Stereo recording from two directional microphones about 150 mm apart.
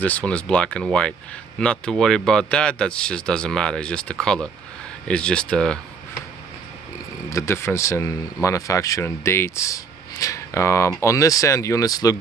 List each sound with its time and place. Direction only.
0.0 s speech: 10° left (ahead or behind)
7.2 s speech: 20° left (ahead or behind)